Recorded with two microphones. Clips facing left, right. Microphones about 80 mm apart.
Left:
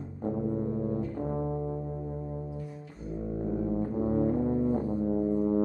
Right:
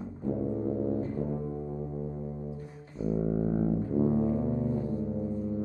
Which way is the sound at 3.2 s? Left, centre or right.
Right.